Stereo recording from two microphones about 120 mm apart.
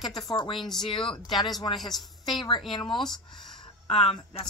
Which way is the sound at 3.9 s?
55° left (ahead or behind).